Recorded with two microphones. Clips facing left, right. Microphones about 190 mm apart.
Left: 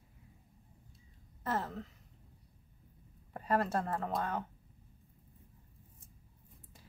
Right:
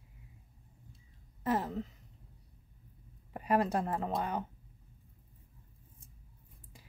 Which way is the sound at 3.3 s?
15° right (ahead or behind).